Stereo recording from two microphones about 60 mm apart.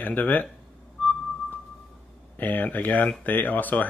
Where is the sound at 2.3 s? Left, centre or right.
Left.